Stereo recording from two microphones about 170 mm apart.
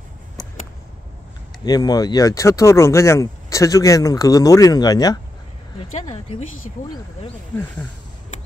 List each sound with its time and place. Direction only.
1.6 s speech: 20° left (ahead or behind)